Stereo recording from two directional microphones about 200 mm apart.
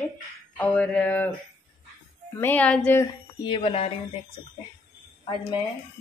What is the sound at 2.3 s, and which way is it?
Speech, 10° left (ahead or behind).